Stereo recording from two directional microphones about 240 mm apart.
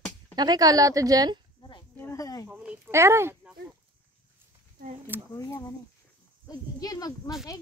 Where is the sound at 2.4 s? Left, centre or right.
Centre.